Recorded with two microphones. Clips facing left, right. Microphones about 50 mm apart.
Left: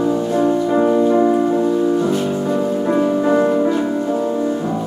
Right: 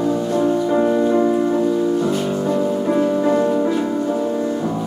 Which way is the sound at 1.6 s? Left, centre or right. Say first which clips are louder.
Left 2 dB; centre.